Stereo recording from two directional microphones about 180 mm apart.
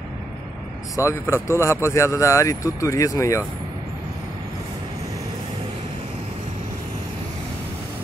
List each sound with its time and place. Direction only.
1.2 s speech: 15° left (ahead or behind)